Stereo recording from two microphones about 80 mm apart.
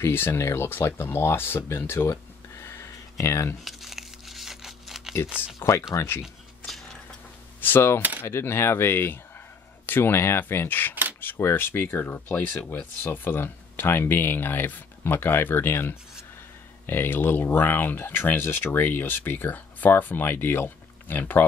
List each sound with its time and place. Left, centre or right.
0.0 s speech: left
2.6 s a sound: left
3.6 s crumpling: centre
5.6 s speech: left
6.2 s a sound: centre
7.6 s speech: left